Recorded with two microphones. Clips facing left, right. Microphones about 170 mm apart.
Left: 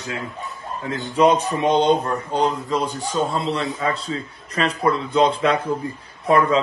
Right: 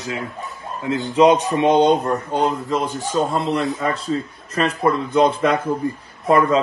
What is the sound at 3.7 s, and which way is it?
Speech, centre (ahead or behind).